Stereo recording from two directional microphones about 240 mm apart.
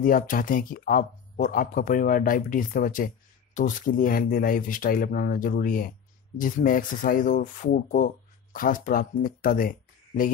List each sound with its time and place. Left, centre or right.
0.0 s speech: left